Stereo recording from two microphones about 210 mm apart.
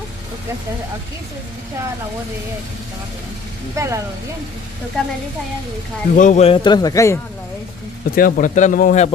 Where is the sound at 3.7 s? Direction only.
15° right (ahead or behind).